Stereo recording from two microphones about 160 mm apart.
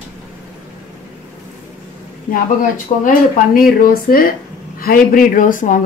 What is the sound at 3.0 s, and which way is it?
Speech, 65° left (ahead or behind).